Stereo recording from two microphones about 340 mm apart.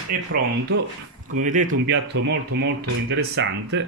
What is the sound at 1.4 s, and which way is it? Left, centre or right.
Speech, right.